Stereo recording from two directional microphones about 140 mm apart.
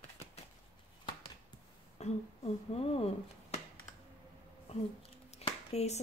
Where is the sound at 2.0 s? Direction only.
50° left (ahead or behind).